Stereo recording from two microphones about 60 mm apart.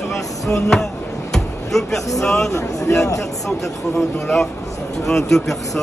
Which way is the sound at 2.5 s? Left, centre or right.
Left.